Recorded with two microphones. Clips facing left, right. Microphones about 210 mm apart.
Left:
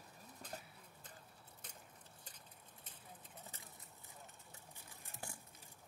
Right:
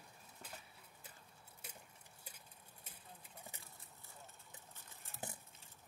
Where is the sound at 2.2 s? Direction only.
10° right (ahead or behind).